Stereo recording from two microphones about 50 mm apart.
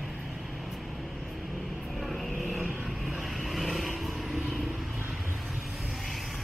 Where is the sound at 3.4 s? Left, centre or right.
Centre.